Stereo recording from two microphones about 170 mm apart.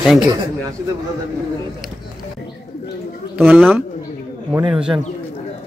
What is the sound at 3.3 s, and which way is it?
Speech, 10° right (ahead or behind).